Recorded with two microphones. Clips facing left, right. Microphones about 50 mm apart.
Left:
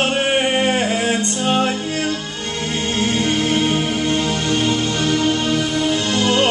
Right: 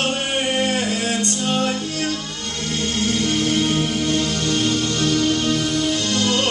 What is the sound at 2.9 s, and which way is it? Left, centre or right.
Music, left.